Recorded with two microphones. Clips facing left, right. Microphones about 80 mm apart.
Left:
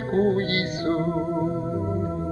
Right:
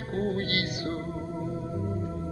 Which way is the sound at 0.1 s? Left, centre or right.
Left.